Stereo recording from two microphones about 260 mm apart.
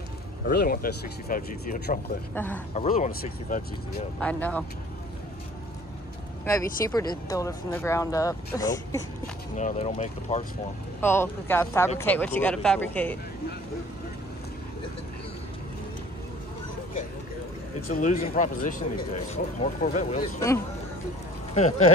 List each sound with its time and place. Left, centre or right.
0.5 s speech: left
2.3 s speech: centre
2.7 s speech: left
4.2 s speech: centre
6.4 s speech: centre
9.6 s speech: left
11.0 s speech: centre
17.8 s speech: left
21.5 s speech: left